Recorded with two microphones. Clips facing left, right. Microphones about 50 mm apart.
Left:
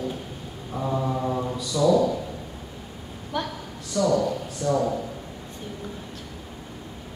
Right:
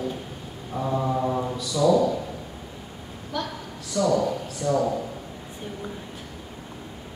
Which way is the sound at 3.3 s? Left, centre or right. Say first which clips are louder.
Left 1 dB; left.